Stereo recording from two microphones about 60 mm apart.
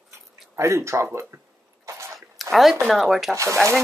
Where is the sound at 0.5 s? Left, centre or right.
Right.